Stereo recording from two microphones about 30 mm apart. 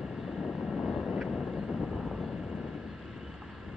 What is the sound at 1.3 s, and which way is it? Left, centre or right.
Vehicle, left.